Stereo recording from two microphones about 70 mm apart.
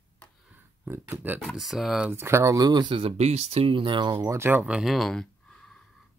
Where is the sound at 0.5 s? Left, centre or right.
Right.